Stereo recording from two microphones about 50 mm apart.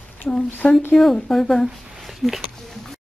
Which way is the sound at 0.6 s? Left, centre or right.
Centre.